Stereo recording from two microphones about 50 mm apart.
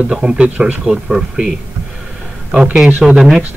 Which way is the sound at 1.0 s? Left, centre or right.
Centre.